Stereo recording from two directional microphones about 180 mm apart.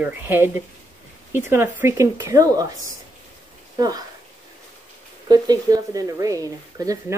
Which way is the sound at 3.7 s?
20° right (ahead or behind).